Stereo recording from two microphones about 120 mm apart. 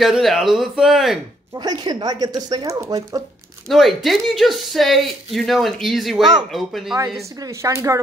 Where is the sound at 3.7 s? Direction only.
Centre (ahead or behind).